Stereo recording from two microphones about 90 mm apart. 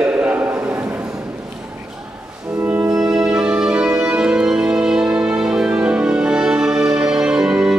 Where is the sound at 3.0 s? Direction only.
5° right (ahead or behind).